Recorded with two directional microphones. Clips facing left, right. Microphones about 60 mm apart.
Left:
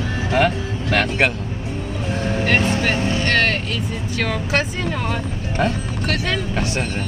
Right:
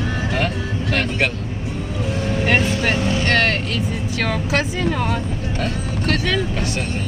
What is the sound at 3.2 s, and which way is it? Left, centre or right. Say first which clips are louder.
Speech: even; centre.